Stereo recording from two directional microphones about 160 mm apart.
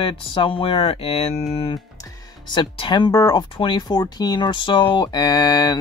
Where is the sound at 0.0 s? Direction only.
35° left (ahead or behind).